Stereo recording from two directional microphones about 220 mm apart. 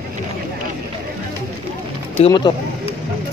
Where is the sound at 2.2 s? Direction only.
20° left (ahead or behind).